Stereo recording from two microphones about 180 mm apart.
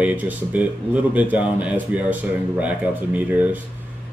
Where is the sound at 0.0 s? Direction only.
10° right (ahead or behind).